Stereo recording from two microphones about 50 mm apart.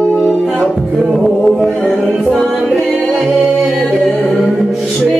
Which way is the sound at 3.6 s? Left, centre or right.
Centre.